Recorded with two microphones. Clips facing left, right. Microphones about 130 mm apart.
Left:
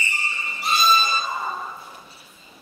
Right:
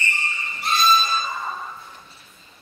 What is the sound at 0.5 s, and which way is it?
Music, 5° left (ahead or behind).